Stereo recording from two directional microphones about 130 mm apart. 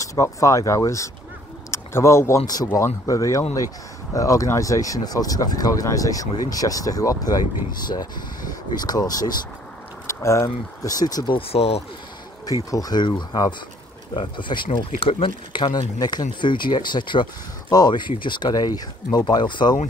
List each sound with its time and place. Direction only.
0.0 s speech: 25° left (ahead or behind)
11.3 s speech: 50° left (ahead or behind)
12.4 s speech: 30° left (ahead or behind)